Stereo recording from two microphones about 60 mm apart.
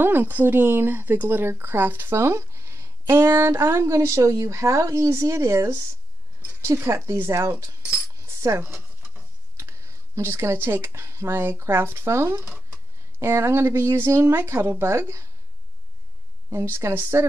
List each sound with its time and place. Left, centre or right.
0.0 s speech: right
10.1 s speech: right
16.6 s speech: right